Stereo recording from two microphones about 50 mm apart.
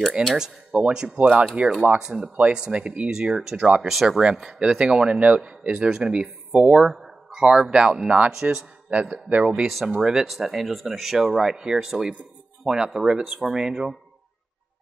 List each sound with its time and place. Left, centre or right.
0.4 s speech: centre
1.1 s speech: right
2.0 s speech: centre
2.2 s speech: right
2.5 s speech: centre
3.1 s speech: centre
3.5 s speech: right
3.8 s speech: centre
4.2 s speech: centre
8.3 s speech: centre
9.1 s speech: right
9.5 s speech: centre